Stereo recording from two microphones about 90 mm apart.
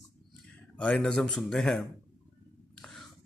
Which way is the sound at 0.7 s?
10° left (ahead or behind).